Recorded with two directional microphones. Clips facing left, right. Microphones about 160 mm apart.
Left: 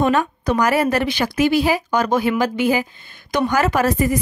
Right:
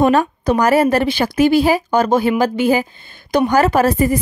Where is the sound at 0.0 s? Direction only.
35° right (ahead or behind).